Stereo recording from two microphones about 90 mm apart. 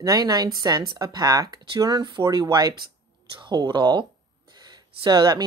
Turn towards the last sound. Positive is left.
turn(degrees=-50)  # may be behind; listen again after turning